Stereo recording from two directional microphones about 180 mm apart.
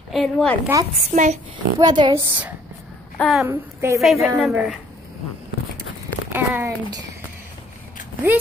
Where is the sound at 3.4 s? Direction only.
10° right (ahead or behind).